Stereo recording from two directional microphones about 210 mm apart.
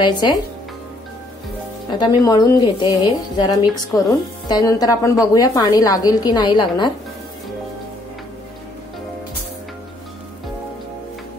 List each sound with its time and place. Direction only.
0.0 s a woman's voice: 20° left (ahead or behind)
1.9 s a woman's voice: 20° left (ahead or behind)